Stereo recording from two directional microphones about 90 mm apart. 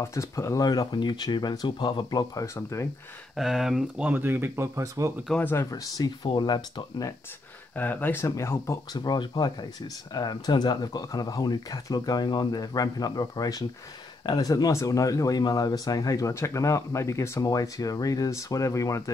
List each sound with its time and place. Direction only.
0.0 s speech: 35° left (ahead or behind)
0.7 s speech: 50° left (ahead or behind)
2.0 s speech: 45° left (ahead or behind)
2.4 s speech: 30° left (ahead or behind)
3.3 s speech: 5° right (ahead or behind)
4.0 s speech: 20° right (ahead or behind)
5.4 s speech: 25° left (ahead or behind)
5.7 s speech: 45° left (ahead or behind)
6.2 s speech: 55° left (ahead or behind)
7.7 s speech: 20° left (ahead or behind)
8.9 s speech: 50° left (ahead or behind); by 17.5 s 30° left (ahead or behind)
17.5 s speech: 45° left (ahead or behind)